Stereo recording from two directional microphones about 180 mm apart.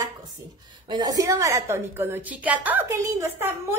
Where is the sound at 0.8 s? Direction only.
20° right (ahead or behind).